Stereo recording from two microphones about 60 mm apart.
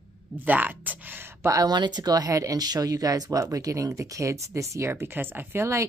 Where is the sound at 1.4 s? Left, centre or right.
Right.